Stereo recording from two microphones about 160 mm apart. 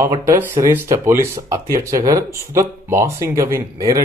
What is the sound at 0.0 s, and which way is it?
Speech, 15° right (ahead or behind).